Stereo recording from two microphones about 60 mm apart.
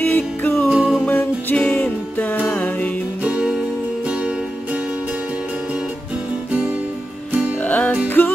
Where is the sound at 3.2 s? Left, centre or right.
Centre.